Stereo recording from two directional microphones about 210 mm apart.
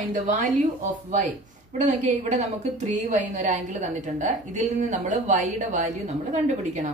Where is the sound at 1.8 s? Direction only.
35° right (ahead or behind).